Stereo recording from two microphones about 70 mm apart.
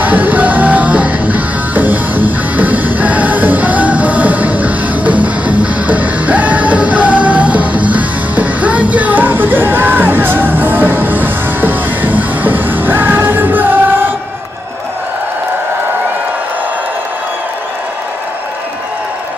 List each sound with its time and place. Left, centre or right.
0.0 s music: right